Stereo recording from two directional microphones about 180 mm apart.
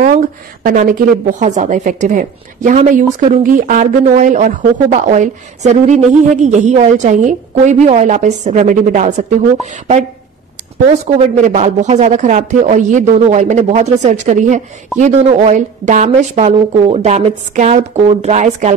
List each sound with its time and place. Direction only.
0.7 s speech: 50° right (ahead or behind)
11.4 s speech: 40° right (ahead or behind)